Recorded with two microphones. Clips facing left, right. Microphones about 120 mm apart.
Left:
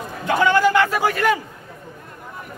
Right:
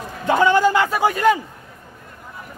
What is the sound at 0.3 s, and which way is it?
A man's voice, 20° right (ahead or behind).